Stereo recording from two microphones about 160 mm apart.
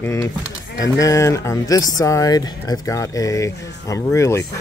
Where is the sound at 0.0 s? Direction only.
20° left (ahead or behind).